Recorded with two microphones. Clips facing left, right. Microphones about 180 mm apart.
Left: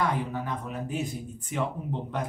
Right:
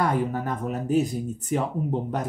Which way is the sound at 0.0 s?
45° right (ahead or behind).